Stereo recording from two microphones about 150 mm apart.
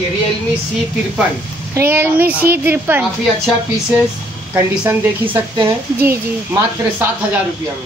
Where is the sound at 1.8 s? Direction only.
15° right (ahead or behind).